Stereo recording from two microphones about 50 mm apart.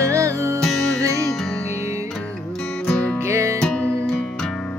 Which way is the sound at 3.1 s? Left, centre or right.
Right.